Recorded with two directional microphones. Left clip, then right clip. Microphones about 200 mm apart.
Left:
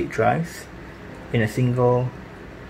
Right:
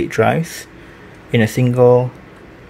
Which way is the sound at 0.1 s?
50° right (ahead or behind).